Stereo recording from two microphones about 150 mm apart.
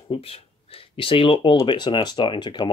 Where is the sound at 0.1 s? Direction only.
40° left (ahead or behind).